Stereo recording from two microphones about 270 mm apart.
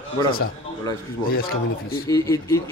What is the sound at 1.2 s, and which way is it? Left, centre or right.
Speech, left.